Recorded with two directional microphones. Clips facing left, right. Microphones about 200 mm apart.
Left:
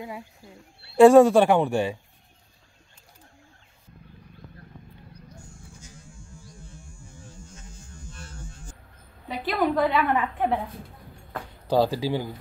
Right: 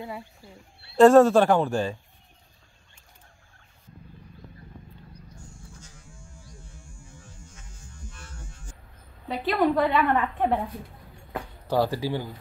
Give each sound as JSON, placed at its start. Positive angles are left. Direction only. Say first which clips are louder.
{"t": 0.9, "sound": "speech", "louder": "left 2 dB", "side_deg": 10}
{"t": 8.1, "sound": "hum", "louder": "left 3 dB", "side_deg": 35}
{"t": 9.3, "sound": "a woman's voice", "louder": "right 2 dB", "side_deg": 5}
{"t": 11.6, "sound": "speech", "louder": "left 2 dB", "side_deg": 15}